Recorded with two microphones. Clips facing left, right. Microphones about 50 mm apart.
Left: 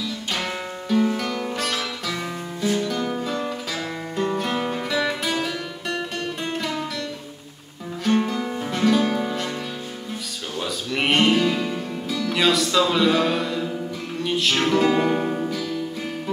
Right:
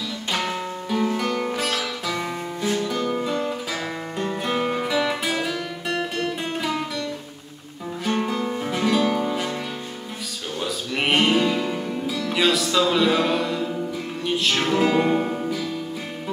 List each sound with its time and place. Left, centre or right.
0.4 s guitar: centre
1.6 s music: centre
2.1 s music: right
3.2 s music: centre
10.6 s music: centre